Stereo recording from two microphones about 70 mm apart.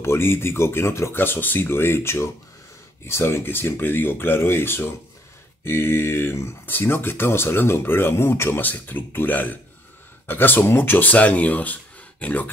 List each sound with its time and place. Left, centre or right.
0.0 s speech: left